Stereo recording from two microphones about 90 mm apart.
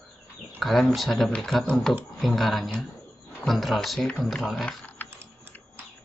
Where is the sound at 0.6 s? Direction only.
Centre (ahead or behind).